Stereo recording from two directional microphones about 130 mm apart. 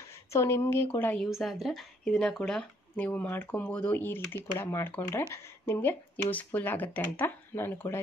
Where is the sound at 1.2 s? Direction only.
Centre (ahead or behind).